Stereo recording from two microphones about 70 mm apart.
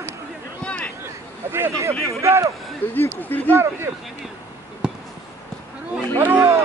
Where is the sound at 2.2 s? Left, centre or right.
Right.